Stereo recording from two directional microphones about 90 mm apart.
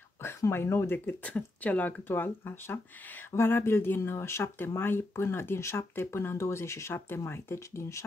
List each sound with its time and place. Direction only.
0.5 s speech: 25° left (ahead or behind)